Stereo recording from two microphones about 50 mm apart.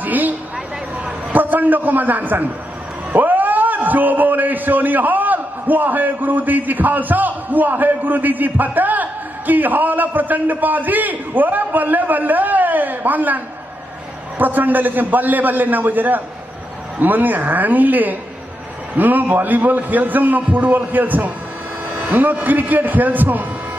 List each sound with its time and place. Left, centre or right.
0.0 s a man's voice: right
14.4 s a man's voice: right